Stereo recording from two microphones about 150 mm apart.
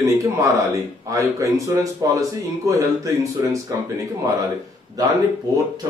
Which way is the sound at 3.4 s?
20° right (ahead or behind).